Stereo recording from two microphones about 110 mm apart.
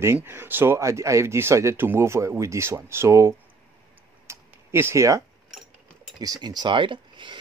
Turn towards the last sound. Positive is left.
turn(degrees=-45)  # may be behind; listen again after turning